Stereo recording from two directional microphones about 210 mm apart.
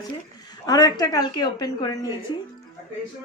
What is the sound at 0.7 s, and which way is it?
A woman's voice, 20° left (ahead or behind).